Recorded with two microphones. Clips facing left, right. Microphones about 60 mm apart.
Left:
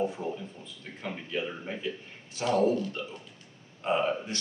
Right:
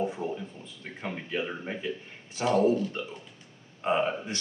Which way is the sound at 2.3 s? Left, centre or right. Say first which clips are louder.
Right 2 dB; right.